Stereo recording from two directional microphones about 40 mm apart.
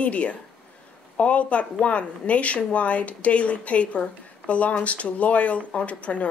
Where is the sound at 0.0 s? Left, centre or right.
Left.